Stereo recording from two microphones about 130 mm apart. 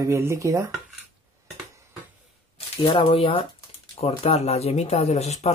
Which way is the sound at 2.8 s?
45° left (ahead or behind).